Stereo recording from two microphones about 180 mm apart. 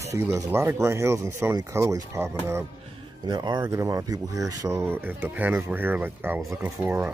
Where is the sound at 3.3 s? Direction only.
25° right (ahead or behind).